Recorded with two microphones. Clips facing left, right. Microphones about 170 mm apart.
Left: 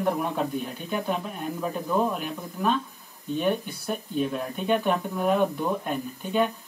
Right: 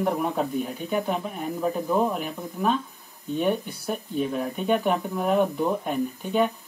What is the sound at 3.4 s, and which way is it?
Speech, centre (ahead or behind).